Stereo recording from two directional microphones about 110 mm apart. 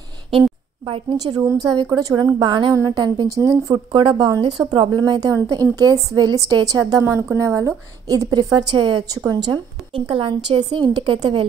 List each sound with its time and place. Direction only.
0.3 s a woman's voice: 55° right (ahead or behind); by 3.7 s 30° right (ahead or behind)
3.7 s a woman's voice: 50° right (ahead or behind)